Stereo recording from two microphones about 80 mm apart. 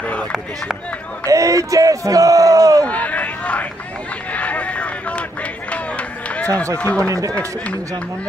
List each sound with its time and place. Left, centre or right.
0.0 s run: centre
1.2 s a sound: right
2.9 s hubbub: centre
4.3 s a sound: centre
5.7 s run: centre
7.0 s speech: right